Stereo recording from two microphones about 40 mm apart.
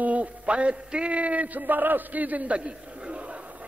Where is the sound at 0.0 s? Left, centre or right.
Right.